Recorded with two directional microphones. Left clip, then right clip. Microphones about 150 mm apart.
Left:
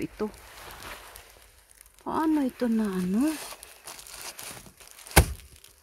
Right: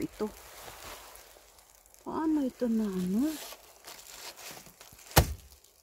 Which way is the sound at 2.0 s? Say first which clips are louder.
Left 5 dB; 15° left (ahead or behind).